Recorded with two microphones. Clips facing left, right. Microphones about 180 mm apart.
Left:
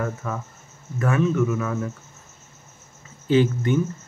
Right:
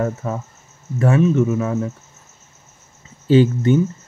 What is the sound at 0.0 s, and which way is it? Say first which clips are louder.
Speech: right 5 dB; 30° right (ahead or behind).